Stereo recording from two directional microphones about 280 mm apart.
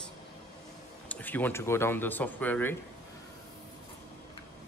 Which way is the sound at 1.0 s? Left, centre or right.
Centre.